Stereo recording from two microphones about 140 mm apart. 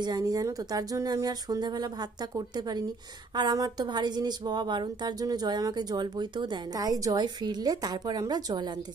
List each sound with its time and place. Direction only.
0.0 s speech: 25° right (ahead or behind)